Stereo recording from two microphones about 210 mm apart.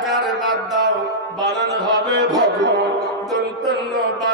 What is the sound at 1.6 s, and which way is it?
Music, 55° right (ahead or behind).